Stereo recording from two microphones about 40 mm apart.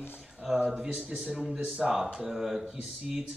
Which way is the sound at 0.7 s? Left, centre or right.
Centre.